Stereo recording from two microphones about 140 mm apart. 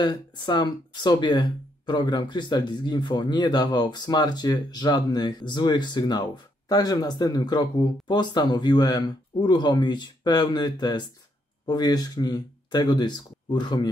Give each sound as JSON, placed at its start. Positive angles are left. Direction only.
{"t": 0.0, "sound": "speech", "side_deg": 30}